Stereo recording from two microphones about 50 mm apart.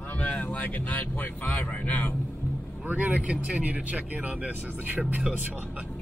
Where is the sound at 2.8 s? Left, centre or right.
Right.